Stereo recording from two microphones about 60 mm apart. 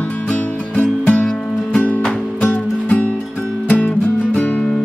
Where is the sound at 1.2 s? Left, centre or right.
Centre.